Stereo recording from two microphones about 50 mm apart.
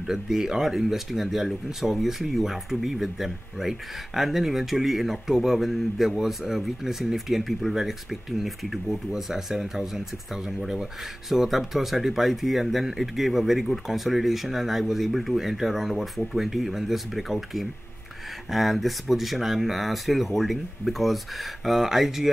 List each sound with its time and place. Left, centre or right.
0.0 s speech: centre